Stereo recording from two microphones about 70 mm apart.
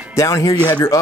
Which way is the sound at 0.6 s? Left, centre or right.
Left.